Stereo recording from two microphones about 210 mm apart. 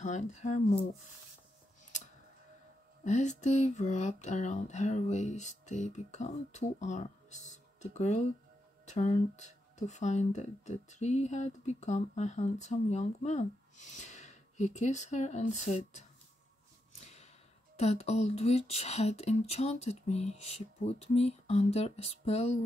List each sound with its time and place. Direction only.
0.0 s speech: 35° left (ahead or behind)
3.1 s speech: 35° left (ahead or behind)
17.0 s a sound: 30° left (ahead or behind)
17.7 s speech: 30° left (ahead or behind)